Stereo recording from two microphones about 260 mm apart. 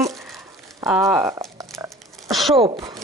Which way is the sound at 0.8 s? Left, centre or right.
Centre.